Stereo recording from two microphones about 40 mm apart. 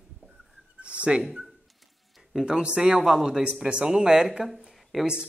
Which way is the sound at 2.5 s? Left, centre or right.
Right.